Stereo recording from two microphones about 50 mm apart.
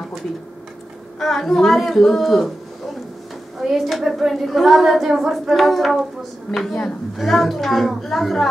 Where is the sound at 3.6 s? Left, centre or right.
Centre.